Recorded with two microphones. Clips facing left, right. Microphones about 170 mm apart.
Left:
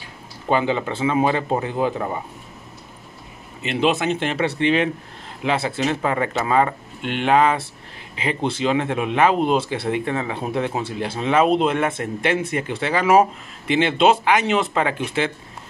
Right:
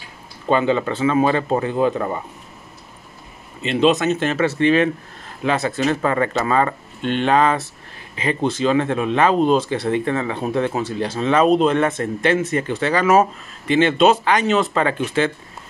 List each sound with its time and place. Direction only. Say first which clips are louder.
0.5 s speech: right 3 dB; 15° left (ahead or behind)
3.6 s speech: right 4 dB; 10° left (ahead or behind)